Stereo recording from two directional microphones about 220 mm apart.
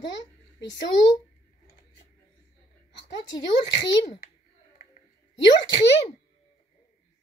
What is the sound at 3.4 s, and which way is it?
Speech, 55° left (ahead or behind).